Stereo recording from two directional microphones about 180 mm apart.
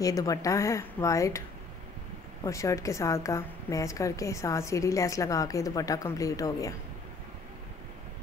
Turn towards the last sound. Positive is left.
turn(degrees=20)  # may be behind; listen again after turning